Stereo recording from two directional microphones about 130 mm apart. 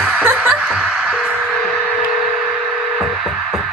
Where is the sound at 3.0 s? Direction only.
5° right (ahead or behind).